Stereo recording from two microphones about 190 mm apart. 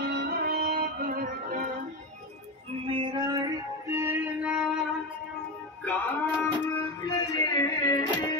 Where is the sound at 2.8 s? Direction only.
25° right (ahead or behind); by 4.6 s 10° right (ahead or behind).